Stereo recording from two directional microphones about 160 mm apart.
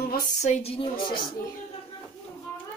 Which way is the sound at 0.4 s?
45° left (ahead or behind).